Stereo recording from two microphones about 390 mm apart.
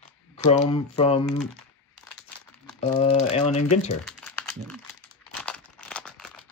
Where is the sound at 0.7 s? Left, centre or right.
Centre.